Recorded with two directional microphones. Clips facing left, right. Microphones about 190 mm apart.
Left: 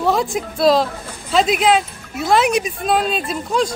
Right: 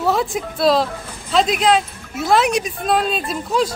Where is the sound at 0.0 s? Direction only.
Centre (ahead or behind).